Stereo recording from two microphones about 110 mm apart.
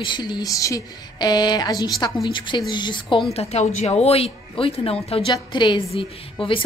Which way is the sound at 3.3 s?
75° left (ahead or behind).